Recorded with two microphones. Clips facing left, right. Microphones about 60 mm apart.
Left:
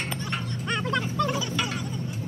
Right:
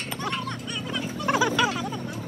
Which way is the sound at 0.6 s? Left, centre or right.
Left.